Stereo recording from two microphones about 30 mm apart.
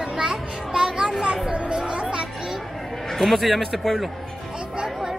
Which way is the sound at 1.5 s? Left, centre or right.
Right.